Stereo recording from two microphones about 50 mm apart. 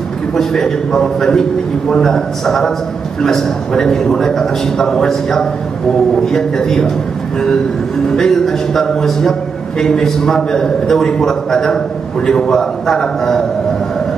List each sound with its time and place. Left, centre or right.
0.4 s a man's voice: centre
8.2 s a man's voice: centre